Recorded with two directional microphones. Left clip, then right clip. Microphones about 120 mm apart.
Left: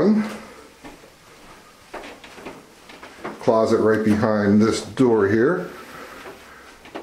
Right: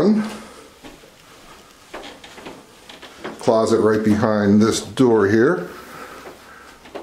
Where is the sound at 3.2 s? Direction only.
15° right (ahead or behind).